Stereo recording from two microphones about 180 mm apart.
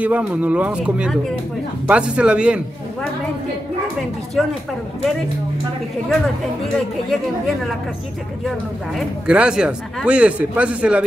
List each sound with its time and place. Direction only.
0.0 s speech: 5° right (ahead or behind)
4.4 s speech: 5° left (ahead or behind)
6.6 s speech: centre (ahead or behind)
8.9 s speech: 5° right (ahead or behind)